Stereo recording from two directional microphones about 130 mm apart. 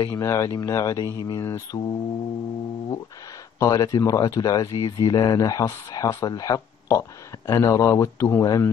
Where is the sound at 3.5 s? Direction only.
30° left (ahead or behind).